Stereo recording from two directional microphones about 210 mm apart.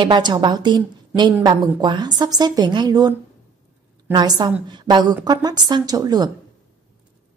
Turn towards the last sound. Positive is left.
turn(degrees=-20)  # may be behind; listen again after turning